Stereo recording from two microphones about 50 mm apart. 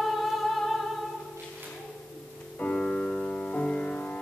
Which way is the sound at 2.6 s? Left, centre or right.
Left.